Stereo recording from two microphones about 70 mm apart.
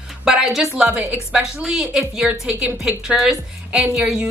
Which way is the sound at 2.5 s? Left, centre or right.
Right.